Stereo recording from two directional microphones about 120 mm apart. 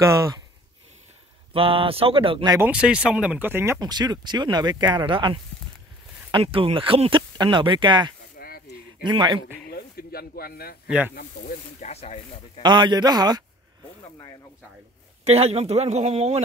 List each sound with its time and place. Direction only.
1.5 s speech: 50° right (ahead or behind)
2.6 s speech: 10° right (ahead or behind)
3.8 s speech: 35° right (ahead or behind)
10.9 s speech: 15° right (ahead or behind)
11.3 s speech: 70° left (ahead or behind)
12.6 s speech: 40° right (ahead or behind)
15.2 s speech: 60° right (ahead or behind)